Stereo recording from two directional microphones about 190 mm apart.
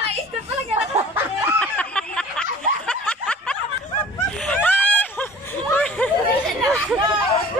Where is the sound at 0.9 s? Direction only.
15° right (ahead or behind).